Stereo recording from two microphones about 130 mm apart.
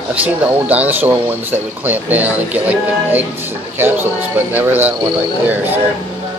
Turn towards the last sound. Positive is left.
turn(degrees=-15)  # may be behind; listen again after turning